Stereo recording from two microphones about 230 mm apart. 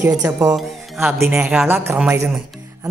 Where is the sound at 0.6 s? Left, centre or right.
Centre.